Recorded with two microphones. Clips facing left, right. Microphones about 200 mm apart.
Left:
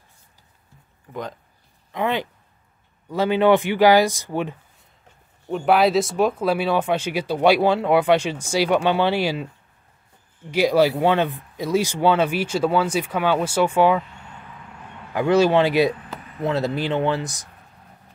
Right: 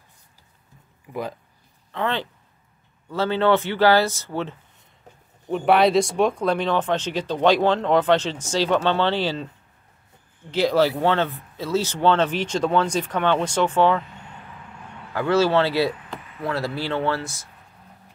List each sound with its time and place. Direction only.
1.9 s speech: 15° left (ahead or behind)
5.5 s speech: centre (ahead or behind)
10.5 s speech: 10° left (ahead or behind)
15.1 s speech: 15° left (ahead or behind)